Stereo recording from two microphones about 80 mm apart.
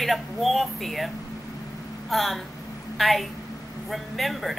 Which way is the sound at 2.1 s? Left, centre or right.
Centre.